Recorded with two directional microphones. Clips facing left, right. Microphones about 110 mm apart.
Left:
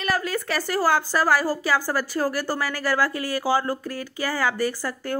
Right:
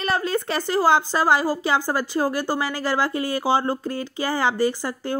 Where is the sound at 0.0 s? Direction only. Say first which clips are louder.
Right 2 dB; 25° right (ahead or behind).